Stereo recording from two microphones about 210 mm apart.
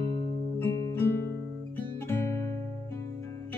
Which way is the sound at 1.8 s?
10° left (ahead or behind).